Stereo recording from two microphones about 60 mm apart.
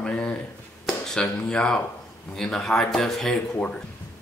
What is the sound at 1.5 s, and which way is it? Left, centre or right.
Speech, centre.